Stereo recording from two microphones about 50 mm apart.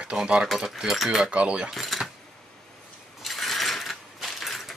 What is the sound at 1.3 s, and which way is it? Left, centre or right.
Speech, right.